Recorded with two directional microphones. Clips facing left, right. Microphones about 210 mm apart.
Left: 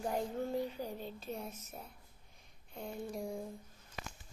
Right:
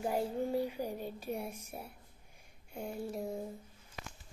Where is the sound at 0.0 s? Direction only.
10° right (ahead or behind).